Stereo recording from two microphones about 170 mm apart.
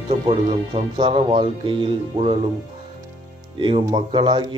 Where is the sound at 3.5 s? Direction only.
30° right (ahead or behind).